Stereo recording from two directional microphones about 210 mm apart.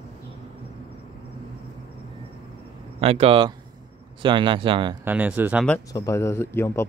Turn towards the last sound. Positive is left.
turn(degrees=10)  # may be behind; listen again after turning